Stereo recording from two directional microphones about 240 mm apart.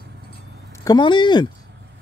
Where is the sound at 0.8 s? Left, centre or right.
Centre.